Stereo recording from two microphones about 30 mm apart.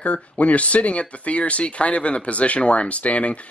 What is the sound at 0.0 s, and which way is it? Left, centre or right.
Speech, left.